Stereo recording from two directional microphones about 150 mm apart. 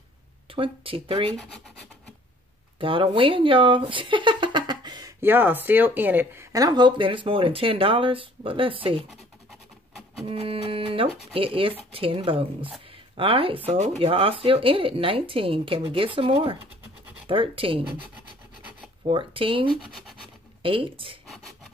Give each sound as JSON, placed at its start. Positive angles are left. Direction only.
{"t": 0.5, "sound": "speech", "side_deg": -35}
{"t": 2.8, "sound": "speech", "side_deg": -35}
{"t": 5.2, "sound": "speech", "side_deg": -15}
{"t": 10.2, "sound": "speech", "side_deg": -40}
{"t": 19.0, "sound": "speech", "side_deg": -35}